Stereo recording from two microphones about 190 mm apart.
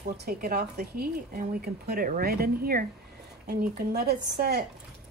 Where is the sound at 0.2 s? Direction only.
55° right (ahead or behind).